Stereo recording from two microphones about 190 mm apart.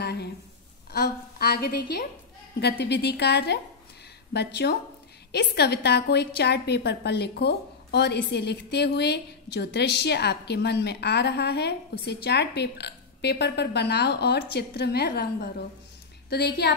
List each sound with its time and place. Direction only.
0.0 s a sound: 60° left (ahead or behind)
0.9 s a woman's voice: 55° left (ahead or behind)
16.3 s a woman's voice: 60° left (ahead or behind)